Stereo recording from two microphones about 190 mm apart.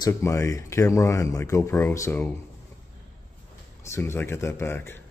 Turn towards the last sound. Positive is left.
turn(degrees=10)  # may be behind; listen again after turning